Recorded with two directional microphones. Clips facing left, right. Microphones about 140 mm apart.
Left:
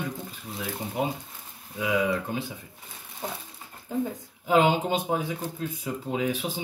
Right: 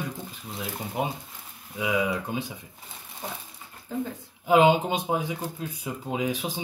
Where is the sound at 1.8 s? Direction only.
15° right (ahead or behind).